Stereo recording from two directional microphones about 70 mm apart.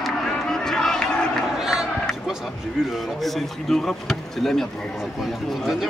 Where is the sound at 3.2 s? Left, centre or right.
Centre.